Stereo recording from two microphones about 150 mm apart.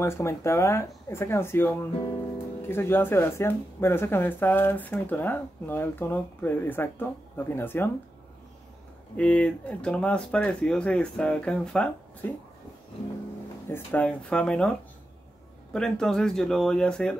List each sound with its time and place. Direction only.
0.0 s speech: 15° left (ahead or behind)
2.7 s speech: 15° left (ahead or behind)
9.1 s speech: 10° left (ahead or behind)
13.7 s speech: 10° left (ahead or behind)